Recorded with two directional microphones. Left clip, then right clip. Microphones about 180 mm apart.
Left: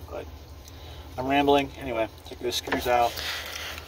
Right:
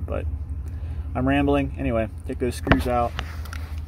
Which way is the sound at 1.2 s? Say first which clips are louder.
Left 1 dB; 30° right (ahead or behind).